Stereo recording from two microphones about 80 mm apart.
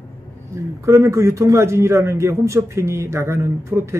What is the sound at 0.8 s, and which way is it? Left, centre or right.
A man's voice, right.